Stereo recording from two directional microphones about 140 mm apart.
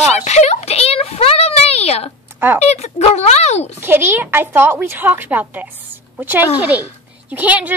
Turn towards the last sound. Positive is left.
turn(degrees=-10)  # may be behind; listen again after turning